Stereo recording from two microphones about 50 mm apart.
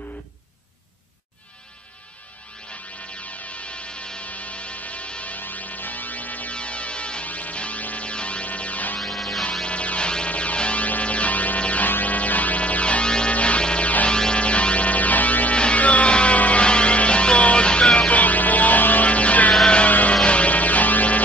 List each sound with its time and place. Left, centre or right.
3.6 s music: left
9.0 s music: centre
9.4 s music: centre